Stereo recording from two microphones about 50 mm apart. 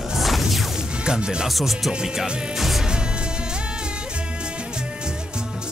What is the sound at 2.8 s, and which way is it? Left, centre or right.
Music, centre.